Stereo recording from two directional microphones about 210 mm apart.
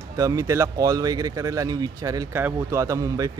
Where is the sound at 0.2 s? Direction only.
15° right (ahead or behind).